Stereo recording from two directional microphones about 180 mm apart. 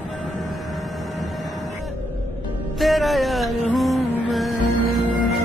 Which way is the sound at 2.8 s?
Centre (ahead or behind).